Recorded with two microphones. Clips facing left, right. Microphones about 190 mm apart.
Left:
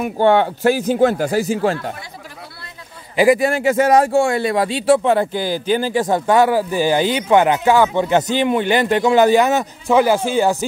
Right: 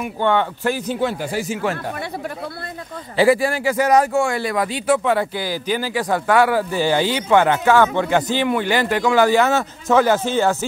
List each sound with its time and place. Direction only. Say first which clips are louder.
0.8 s speech: left 7 dB; 45° left (ahead or behind)
3.2 s a man's voice: left 2 dB; 20° left (ahead or behind)